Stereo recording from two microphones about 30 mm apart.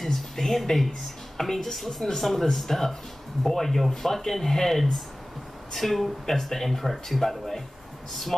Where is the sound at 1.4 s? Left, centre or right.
Centre.